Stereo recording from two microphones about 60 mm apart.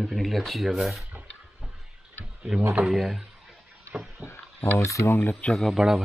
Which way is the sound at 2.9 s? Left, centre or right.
Centre.